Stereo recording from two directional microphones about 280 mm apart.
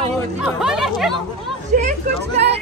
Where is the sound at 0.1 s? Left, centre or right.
Centre.